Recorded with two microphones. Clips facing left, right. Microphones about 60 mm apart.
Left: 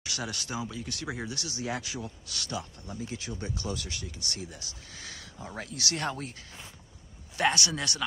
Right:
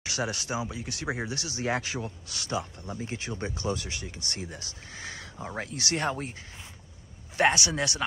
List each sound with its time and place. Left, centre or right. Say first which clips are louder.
0.0 s speech: right 5 dB; right
1.6 s speech: right 5 dB; right
2.2 s speech: right 5 dB; right
2.9 s speech: right 1 dB; right
3.5 s speech: right 4 dB; right
4.9 s speech: right 6 dB; right
7.5 s speech: right 3 dB; centre